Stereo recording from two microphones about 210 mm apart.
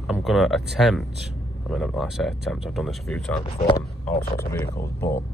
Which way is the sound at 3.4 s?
25° left (ahead or behind).